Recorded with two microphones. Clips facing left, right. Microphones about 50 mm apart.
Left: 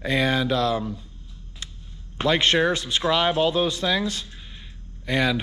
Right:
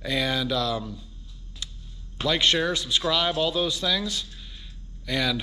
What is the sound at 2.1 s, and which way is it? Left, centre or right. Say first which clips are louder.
Speech: left 3 dB; left.